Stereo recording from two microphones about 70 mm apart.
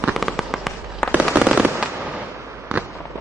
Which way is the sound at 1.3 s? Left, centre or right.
Centre.